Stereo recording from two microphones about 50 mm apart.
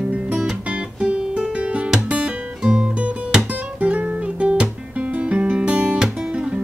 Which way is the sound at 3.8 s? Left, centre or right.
Right.